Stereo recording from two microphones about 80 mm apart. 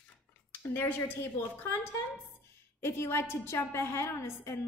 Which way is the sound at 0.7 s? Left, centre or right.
Left.